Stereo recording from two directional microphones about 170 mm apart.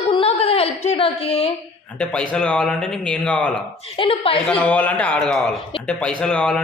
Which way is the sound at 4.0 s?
30° left (ahead or behind).